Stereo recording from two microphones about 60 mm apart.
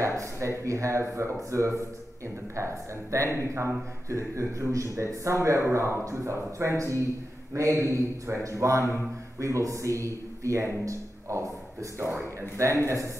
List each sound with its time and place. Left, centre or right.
0.0 s a man's voice: right
12.5 s a man's voice: right